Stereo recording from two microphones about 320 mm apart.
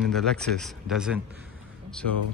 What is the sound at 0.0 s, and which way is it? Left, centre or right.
Speech, centre.